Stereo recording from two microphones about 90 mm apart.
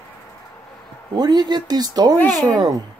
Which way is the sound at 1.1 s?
50° right (ahead or behind).